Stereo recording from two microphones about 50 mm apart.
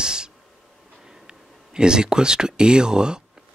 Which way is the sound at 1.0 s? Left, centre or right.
Centre.